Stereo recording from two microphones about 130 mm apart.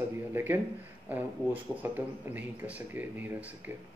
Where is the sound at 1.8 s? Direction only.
15° right (ahead or behind).